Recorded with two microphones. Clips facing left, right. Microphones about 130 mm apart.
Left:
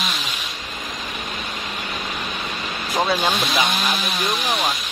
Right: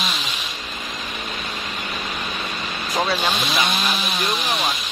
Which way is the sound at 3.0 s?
15° left (ahead or behind).